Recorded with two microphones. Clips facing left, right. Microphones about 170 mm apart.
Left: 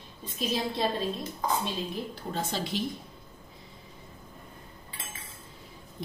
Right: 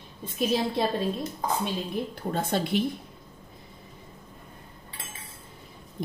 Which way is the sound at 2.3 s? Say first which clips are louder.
Right 6 dB; 55° right (ahead or behind).